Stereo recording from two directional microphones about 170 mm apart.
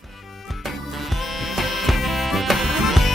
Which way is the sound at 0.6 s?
Centre (ahead or behind).